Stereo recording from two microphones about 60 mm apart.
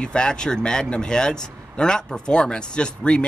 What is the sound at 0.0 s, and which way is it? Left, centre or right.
Speech, centre.